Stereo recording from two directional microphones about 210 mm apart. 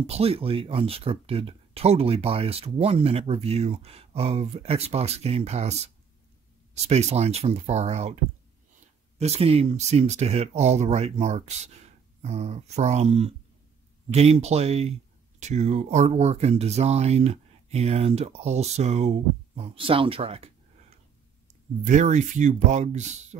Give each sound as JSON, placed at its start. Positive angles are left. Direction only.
{"t": 0.0, "sound": "speech", "side_deg": -30}
{"t": 9.2, "sound": "speech", "side_deg": -30}
{"t": 21.8, "sound": "speech", "side_deg": -35}